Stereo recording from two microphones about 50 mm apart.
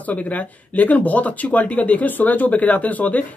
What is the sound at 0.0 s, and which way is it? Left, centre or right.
Speech, left.